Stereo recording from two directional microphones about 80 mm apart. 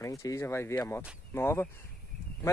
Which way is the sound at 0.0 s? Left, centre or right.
Left.